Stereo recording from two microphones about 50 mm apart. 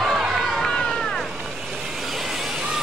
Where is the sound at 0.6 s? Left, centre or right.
Centre.